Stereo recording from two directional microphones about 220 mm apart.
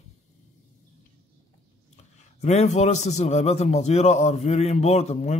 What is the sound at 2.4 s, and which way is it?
A man's voice, 30° left (ahead or behind).